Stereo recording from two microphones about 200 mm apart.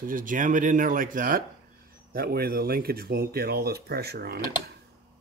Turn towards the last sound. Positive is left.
turn(degrees=-50)  # may be behind; listen again after turning